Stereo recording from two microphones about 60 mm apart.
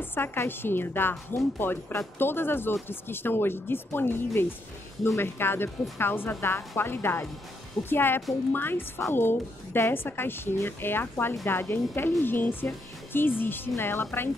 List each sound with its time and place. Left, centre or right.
0.0 s a woman's voice: left